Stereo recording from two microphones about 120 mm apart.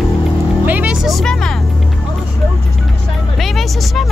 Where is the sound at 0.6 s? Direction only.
10° right (ahead or behind); by 1.6 s 5° left (ahead or behind).